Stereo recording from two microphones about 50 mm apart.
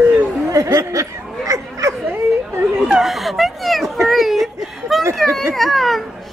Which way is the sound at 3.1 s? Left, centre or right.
Centre.